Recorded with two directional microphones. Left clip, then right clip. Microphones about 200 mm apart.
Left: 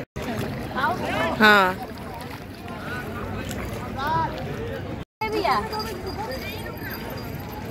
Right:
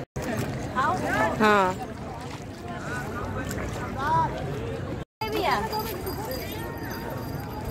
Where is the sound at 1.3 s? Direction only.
Centre (ahead or behind).